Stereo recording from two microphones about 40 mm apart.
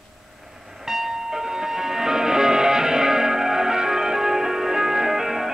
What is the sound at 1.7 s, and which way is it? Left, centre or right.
Music, centre.